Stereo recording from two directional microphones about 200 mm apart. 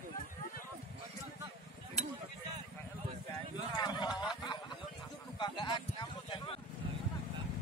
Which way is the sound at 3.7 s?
20° left (ahead or behind).